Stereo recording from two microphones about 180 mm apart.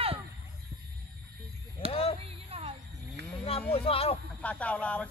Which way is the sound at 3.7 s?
30° left (ahead or behind).